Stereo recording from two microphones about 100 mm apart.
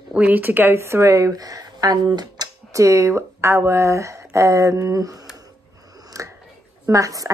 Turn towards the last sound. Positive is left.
turn(degrees=-35)  # may be behind; listen again after turning